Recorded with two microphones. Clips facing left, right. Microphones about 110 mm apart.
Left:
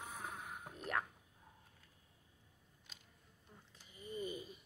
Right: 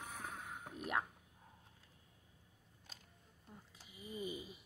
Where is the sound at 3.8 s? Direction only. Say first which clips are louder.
Left 1 dB; 10° right (ahead or behind).